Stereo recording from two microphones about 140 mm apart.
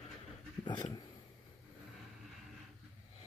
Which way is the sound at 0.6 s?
30° left (ahead or behind).